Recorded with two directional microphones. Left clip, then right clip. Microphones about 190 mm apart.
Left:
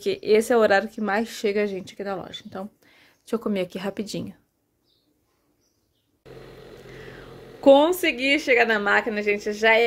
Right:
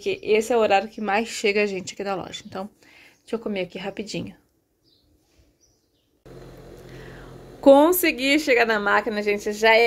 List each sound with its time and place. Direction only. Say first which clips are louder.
0.0 s speech: left 1 dB; 20° left (ahead or behind)
3.3 s speech: left 1 dB; 20° left (ahead or behind)
6.9 s a woman's voice: left 2 dB; centre (ahead or behind)